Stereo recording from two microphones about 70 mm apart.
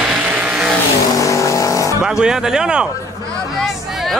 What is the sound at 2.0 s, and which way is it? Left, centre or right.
Speech, centre.